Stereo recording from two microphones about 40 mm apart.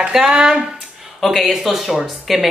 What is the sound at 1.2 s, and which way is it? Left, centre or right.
Speech, centre.